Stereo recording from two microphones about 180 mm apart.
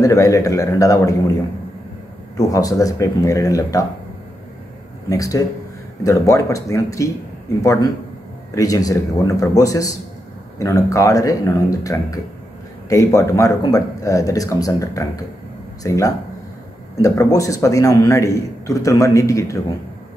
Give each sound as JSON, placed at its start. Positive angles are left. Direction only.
{"t": 0.0, "sound": "a man's voice", "side_deg": 20}
{"t": 2.3, "sound": "speech", "side_deg": 20}
{"t": 5.1, "sound": "a man's voice", "side_deg": 20}